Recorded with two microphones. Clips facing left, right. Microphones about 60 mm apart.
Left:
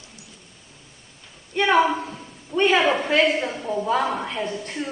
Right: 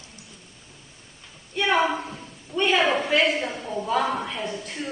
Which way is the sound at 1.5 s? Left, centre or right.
Centre.